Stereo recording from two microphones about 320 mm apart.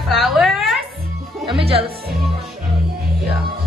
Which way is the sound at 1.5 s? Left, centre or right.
Centre.